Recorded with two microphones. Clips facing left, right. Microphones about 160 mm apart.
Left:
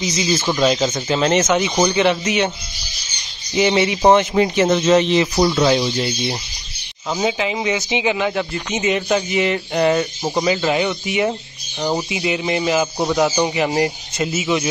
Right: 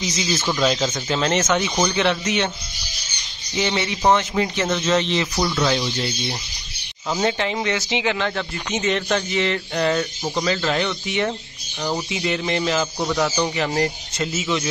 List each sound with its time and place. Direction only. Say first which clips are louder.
0.0 s speech: left 4 dB; centre (ahead or behind)
3.5 s speech: left 7 dB; 15° left (ahead or behind)
5.3 s speech: left 6 dB; 20° left (ahead or behind)